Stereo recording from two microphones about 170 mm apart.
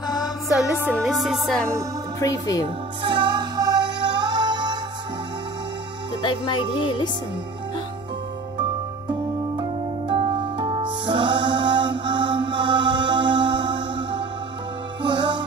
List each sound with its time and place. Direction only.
0.0 s music: 25° left (ahead or behind)
0.9 s music: centre (ahead or behind)
2.1 s speech: 20° left (ahead or behind)
2.6 s music: 30° right (ahead or behind)
6.2 s speech: 30° left (ahead or behind)
9.6 s music: 30° right (ahead or behind)